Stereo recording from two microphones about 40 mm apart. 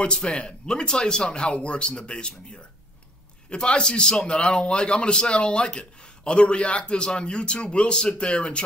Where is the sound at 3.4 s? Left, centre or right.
Left.